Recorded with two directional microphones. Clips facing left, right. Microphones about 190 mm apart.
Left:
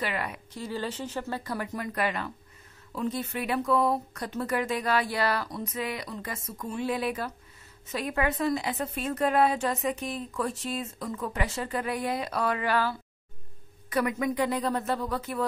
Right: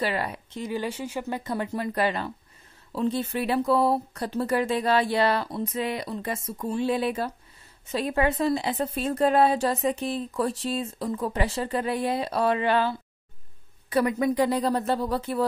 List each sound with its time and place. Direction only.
0.0 s a woman's voice: 30° right (ahead or behind)
0.6 s speech: 15° right (ahead or behind)
1.4 s a woman's voice: 25° right (ahead or behind)